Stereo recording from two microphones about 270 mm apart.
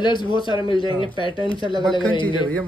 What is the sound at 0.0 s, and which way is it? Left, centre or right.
Speech, centre.